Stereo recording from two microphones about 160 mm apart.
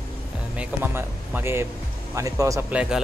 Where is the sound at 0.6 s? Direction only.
10° right (ahead or behind).